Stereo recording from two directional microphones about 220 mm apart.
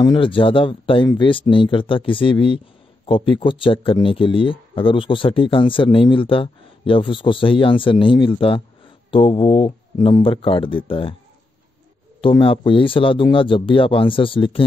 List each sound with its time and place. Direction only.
0.0 s speech: 20° left (ahead or behind)
12.2 s speech: 25° left (ahead or behind)